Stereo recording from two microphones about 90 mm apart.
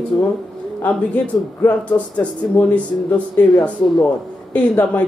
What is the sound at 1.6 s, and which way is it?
Speech, 20° left (ahead or behind).